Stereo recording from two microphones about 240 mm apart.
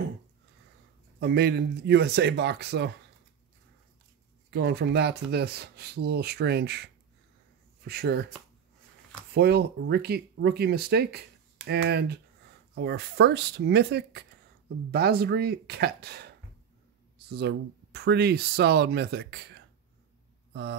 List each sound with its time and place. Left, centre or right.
1.2 s speech: right
4.5 s speech: right
9.3 s speech: right